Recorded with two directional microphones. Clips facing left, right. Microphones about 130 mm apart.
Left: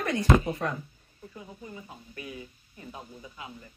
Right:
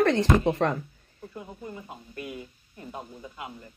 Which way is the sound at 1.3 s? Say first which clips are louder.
Right 4 dB; 55° right (ahead or behind).